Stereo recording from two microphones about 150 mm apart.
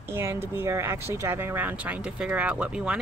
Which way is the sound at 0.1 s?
15° right (ahead or behind).